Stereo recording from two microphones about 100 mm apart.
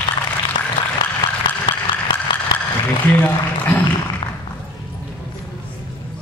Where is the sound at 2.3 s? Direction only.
55° left (ahead or behind).